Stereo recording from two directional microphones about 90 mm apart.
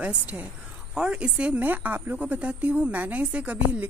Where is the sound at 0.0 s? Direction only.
15° right (ahead or behind).